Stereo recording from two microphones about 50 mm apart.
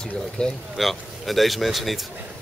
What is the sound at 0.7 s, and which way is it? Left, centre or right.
Speech, centre.